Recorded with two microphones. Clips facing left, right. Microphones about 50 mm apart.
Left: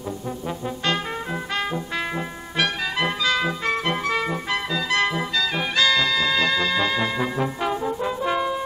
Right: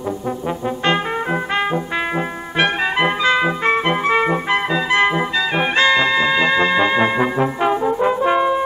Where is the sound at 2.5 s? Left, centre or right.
Right.